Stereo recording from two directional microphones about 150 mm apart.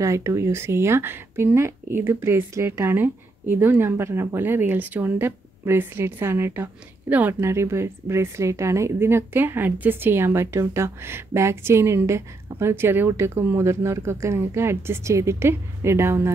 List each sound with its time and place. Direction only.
0.0 s speech: 20° right (ahead or behind)